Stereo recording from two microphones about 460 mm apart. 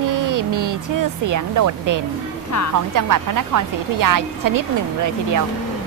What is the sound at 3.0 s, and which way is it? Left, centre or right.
A woman's voice, right.